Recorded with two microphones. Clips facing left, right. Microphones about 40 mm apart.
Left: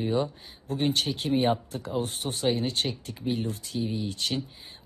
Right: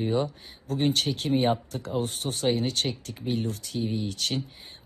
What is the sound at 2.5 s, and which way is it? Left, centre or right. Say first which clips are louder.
Speech: right 1 dB; centre.